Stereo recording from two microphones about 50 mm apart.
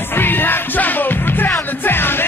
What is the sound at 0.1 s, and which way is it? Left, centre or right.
Music, left.